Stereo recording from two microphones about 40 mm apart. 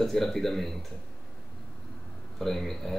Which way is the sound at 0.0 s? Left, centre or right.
Centre.